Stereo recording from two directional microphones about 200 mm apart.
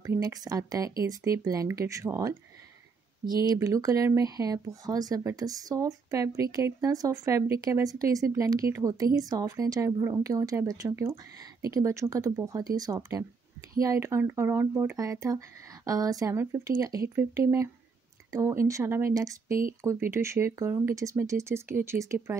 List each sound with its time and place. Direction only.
0.0 s speech: 15° right (ahead or behind)